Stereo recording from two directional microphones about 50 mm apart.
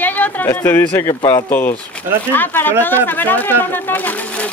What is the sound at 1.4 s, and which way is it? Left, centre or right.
Speech, left.